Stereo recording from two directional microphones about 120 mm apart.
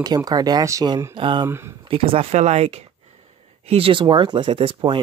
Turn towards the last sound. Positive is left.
turn(degrees=-45)  # may be behind; listen again after turning